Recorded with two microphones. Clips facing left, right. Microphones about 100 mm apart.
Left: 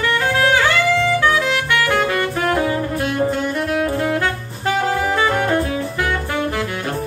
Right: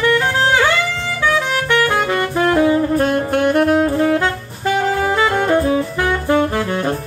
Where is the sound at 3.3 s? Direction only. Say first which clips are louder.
Right 7 dB; 60° right (ahead or behind).